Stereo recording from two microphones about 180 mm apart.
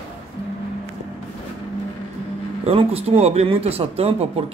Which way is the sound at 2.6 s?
35° right (ahead or behind).